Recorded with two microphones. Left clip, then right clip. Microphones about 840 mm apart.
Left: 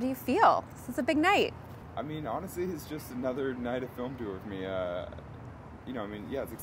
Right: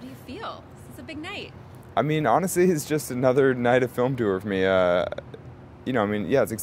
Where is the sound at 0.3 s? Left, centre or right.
Left.